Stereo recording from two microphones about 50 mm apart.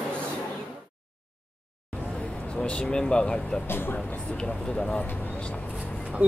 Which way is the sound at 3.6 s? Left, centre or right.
Left.